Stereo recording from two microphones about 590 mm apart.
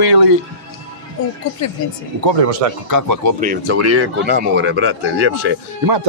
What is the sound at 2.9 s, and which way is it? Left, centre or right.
Speech, right.